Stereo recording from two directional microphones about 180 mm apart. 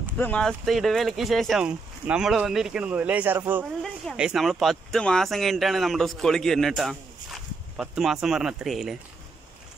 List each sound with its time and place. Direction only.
0.2 s speech: 5° left (ahead or behind); by 3.6 s 10° right (ahead or behind)
3.8 s speech: centre (ahead or behind)